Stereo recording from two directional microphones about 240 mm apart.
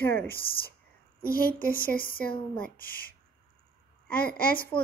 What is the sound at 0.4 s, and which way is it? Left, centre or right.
Speech, left.